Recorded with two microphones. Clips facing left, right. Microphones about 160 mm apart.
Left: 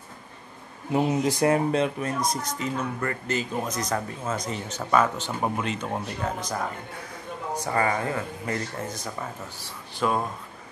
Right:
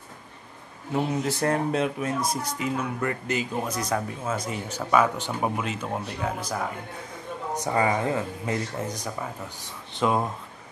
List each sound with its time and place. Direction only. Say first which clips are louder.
0.9 s speech: left 3 dB; 15° left (ahead or behind)
1.7 s speech: left 1 dB; 5° right (ahead or behind)
7.5 s speech: right 1 dB; 15° right (ahead or behind)